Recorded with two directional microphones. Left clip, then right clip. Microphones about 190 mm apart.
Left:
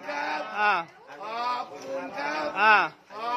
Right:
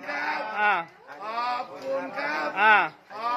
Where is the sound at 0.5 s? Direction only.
5° left (ahead or behind).